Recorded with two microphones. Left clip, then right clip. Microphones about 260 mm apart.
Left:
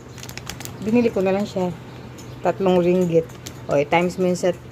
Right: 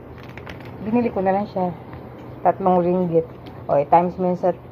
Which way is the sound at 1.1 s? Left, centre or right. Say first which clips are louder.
Right 1 dB; left.